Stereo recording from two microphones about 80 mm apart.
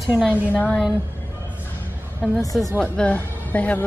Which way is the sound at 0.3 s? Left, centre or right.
Centre.